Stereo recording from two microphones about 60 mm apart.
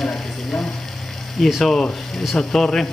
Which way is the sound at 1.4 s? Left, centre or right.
Centre.